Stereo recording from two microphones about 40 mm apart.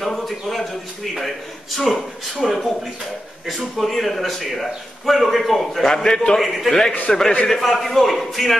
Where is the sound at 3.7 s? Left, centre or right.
Centre.